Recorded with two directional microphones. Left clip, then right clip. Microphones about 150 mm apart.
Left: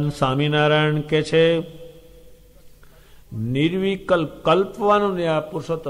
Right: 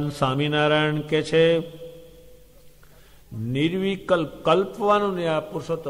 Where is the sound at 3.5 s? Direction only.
40° right (ahead or behind).